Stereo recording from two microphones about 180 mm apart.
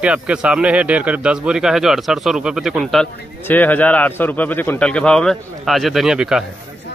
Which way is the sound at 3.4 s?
10° left (ahead or behind).